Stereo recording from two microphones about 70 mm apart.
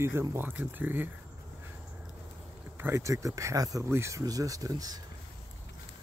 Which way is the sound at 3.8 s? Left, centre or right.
Right.